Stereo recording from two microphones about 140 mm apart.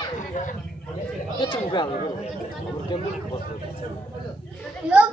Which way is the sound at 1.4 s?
35° left (ahead or behind).